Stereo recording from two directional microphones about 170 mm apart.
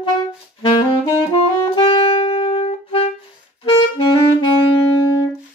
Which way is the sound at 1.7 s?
35° left (ahead or behind).